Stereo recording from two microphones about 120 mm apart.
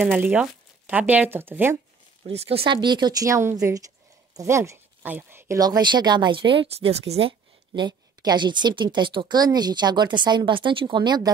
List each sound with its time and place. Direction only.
0.0 s speech: 15° right (ahead or behind)
2.2 s speech: 55° right (ahead or behind); by 5.6 s 20° right (ahead or behind)
5.6 s speech: 35° right (ahead or behind)